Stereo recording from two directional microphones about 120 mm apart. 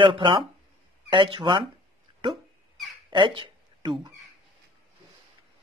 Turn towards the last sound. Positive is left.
turn(degrees=-45)  # may be behind; listen again after turning